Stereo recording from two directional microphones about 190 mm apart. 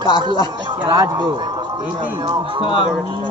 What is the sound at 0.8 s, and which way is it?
Speech, 20° right (ahead or behind).